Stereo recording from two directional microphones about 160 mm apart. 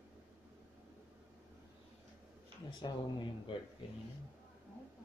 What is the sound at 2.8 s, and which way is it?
Speech, 30° left (ahead or behind).